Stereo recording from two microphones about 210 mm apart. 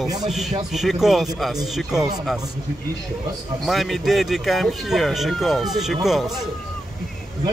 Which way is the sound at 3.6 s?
Centre (ahead or behind).